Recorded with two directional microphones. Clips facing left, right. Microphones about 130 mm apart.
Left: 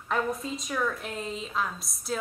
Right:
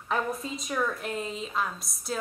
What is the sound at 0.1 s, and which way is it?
A woman's voice, centre (ahead or behind).